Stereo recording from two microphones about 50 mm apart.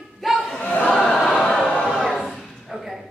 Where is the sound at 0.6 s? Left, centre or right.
Left.